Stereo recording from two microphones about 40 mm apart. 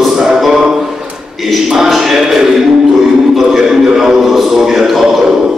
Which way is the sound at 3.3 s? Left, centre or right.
Centre.